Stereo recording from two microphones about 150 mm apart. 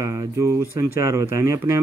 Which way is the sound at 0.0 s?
20° right (ahead or behind).